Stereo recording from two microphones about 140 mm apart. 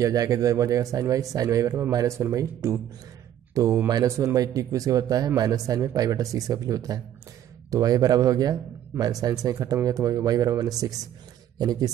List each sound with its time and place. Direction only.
0.0 s speech: 25° right (ahead or behind)